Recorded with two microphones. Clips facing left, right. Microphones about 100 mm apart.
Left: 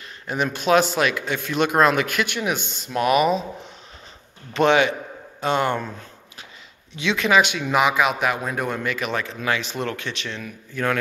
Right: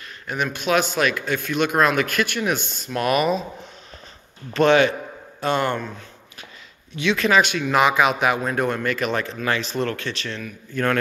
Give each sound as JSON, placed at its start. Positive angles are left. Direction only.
{"t": 0.3, "sound": "a man's voice", "side_deg": 30}
{"t": 1.0, "sound": "speech", "side_deg": 20}
{"t": 4.6, "sound": "speech", "side_deg": 20}
{"t": 7.0, "sound": "speech", "side_deg": 25}
{"t": 7.7, "sound": "a man's voice", "side_deg": 5}